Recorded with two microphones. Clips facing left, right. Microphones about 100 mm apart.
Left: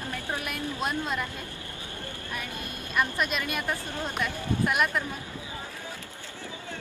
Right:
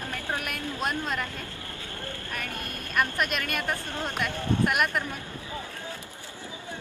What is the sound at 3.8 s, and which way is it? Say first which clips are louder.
Speech: right 1 dB; 15° left (ahead or behind).